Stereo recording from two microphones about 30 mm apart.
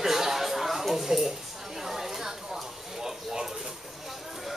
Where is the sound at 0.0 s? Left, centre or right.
Centre.